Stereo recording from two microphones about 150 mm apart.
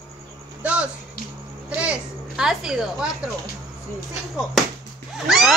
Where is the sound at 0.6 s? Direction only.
10° right (ahead or behind).